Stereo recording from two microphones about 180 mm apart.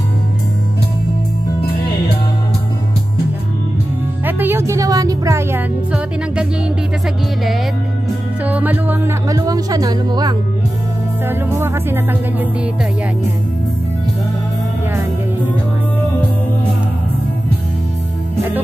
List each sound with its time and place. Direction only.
4.3 s music: 10° right (ahead or behind)
8.5 s music: 10° right (ahead or behind)
9.4 s speech: 20° right (ahead or behind)
11.2 s music: 15° right (ahead or behind)